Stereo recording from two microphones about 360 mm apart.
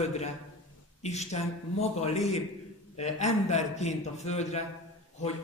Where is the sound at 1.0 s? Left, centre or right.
Centre.